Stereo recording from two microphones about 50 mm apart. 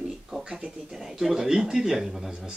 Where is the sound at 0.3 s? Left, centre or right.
Centre.